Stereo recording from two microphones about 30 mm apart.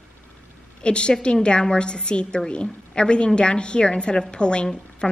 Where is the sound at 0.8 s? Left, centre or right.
Left.